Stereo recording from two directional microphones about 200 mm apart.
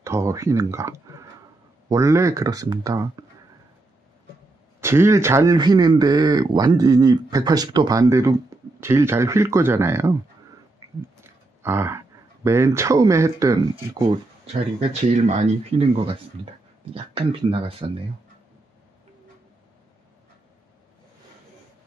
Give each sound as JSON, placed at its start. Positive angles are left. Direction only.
{"t": 0.0, "sound": "speech", "side_deg": -15}
{"t": 4.7, "sound": "speech", "side_deg": -10}
{"t": 10.8, "sound": "a sound", "side_deg": -15}
{"t": 12.4, "sound": "speech", "side_deg": -15}